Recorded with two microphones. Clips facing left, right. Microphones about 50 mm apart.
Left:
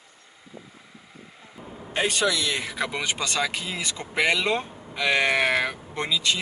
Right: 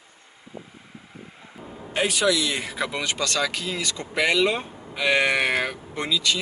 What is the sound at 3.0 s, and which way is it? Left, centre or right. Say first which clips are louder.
Speech: right 2 dB; centre.